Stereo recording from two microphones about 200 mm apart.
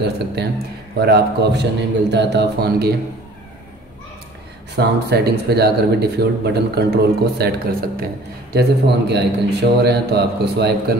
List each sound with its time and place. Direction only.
0.9 s speech: 55° right (ahead or behind)
4.7 s speech: 55° right (ahead or behind)